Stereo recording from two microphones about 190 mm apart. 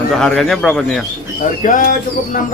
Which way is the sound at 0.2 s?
5° left (ahead or behind).